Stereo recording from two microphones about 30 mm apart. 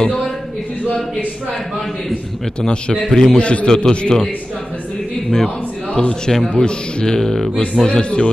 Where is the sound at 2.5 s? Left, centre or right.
Left.